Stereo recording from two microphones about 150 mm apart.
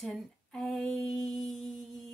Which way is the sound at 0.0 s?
Centre (ahead or behind).